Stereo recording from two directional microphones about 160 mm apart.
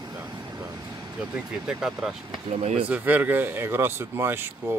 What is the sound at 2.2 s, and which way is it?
Speech, 35° right (ahead or behind).